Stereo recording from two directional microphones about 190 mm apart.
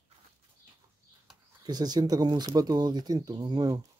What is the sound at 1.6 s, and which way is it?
Speech, 20° right (ahead or behind).